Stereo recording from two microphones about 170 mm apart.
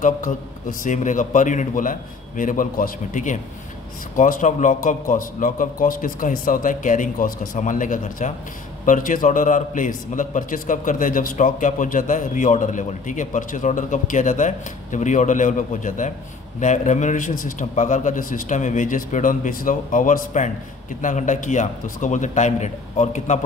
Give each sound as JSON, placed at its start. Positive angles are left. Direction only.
{"t": 0.0, "sound": "a man's voice", "side_deg": 50}